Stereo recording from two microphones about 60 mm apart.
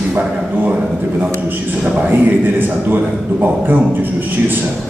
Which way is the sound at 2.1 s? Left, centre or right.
Right.